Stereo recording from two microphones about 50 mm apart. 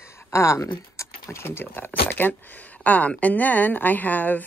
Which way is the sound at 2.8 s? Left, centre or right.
Left.